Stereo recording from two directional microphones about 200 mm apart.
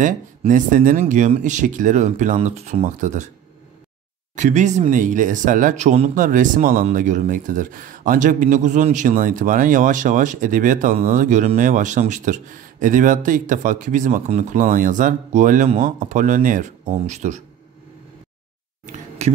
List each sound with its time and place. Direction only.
0.0 s speech: 40° right (ahead or behind)
4.4 s speech: 35° right (ahead or behind)
18.9 s a sound: 35° right (ahead or behind)